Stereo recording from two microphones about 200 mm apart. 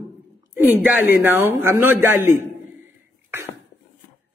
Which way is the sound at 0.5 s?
10° right (ahead or behind).